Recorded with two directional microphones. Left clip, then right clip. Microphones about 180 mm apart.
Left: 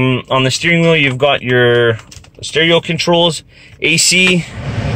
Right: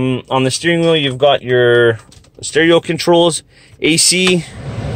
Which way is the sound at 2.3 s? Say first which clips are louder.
Even; 25° right (ahead or behind).